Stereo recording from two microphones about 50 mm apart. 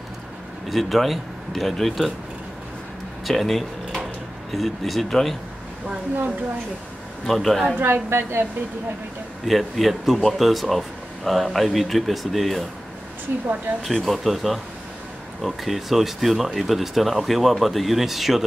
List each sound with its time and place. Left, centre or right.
0.7 s speech: centre
3.3 s speech: centre
7.2 s speech: centre
7.8 s a woman's voice: right
9.5 s speech: centre
13.9 s speech: centre